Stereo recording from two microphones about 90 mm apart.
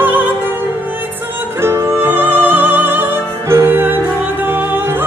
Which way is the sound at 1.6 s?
25° right (ahead or behind).